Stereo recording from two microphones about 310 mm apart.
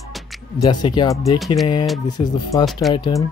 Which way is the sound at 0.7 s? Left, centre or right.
Centre.